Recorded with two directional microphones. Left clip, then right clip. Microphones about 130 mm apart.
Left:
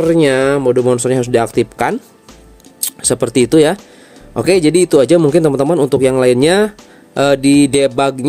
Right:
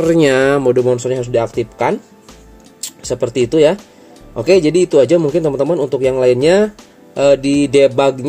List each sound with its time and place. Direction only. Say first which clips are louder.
0.0 s speech: even; centre (ahead or behind)
0.9 s speech: left 3 dB; 50° left (ahead or behind)